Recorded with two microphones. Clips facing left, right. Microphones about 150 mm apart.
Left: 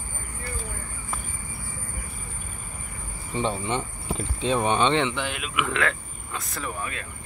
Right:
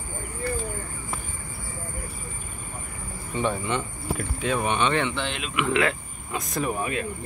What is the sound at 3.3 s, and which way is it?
Speech, 25° left (ahead or behind).